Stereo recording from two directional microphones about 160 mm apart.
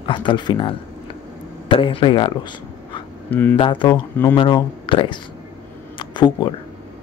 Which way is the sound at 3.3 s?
10° left (ahead or behind).